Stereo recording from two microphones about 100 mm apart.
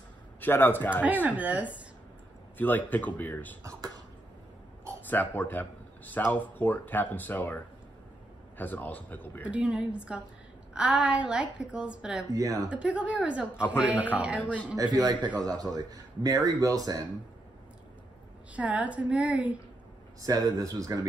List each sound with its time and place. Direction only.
0.4 s speech: 20° left (ahead or behind)
1.0 s a woman's voice: 15° right (ahead or behind)
2.5 s speech: 20° left (ahead or behind)
3.6 s beatboxing: 40° right (ahead or behind)
5.0 s a man's voice: 20° left (ahead or behind)
9.4 s a woman's voice: 10° right (ahead or behind)
12.3 s speech: 35° right (ahead or behind)
12.6 s a woman's voice: 10° right (ahead or behind)
14.8 s speech: 40° right (ahead or behind)
18.6 s a woman's voice: 15° right (ahead or behind)
20.2 s speech: 35° right (ahead or behind)